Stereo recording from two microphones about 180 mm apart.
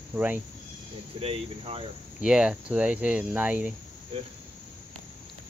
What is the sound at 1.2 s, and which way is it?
Speech, 35° right (ahead or behind).